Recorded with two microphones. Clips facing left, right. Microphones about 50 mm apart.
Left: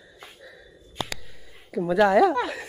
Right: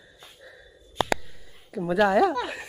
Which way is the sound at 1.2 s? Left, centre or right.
Centre.